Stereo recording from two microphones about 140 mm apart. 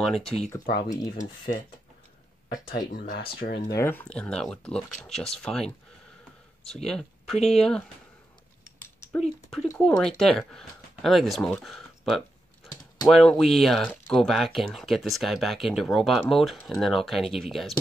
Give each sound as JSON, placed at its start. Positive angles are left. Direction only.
{"t": 0.0, "sound": "speech", "side_deg": 0}
{"t": 0.7, "sound": "speech", "side_deg": 65}
{"t": 2.9, "sound": "speech", "side_deg": 80}
{"t": 3.6, "sound": "speech", "side_deg": 20}
{"t": 6.7, "sound": "speech", "side_deg": 5}
{"t": 8.8, "sound": "typing", "side_deg": 15}
{"t": 9.8, "sound": "speech", "side_deg": 5}
{"t": 12.6, "sound": "typing", "side_deg": 25}
{"t": 13.1, "sound": "speech", "side_deg": 0}